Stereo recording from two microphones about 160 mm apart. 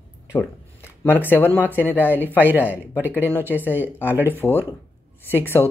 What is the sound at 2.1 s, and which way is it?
Speech, 10° right (ahead or behind).